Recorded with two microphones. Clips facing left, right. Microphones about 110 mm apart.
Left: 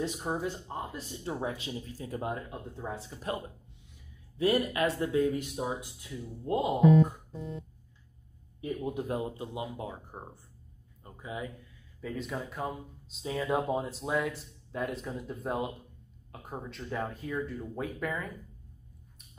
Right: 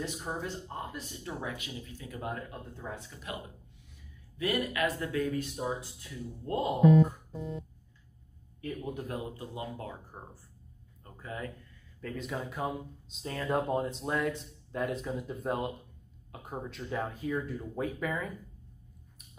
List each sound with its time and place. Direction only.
0.2 s speech: 20° left (ahead or behind)
0.9 s speech: 30° left (ahead or behind)
2.2 s speech: 20° left (ahead or behind)
4.4 s speech: 30° left (ahead or behind)
8.5 s speech: 20° left (ahead or behind)
12.0 s speech: centre (ahead or behind)